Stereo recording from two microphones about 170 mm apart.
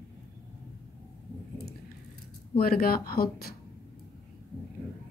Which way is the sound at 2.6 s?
60° left (ahead or behind).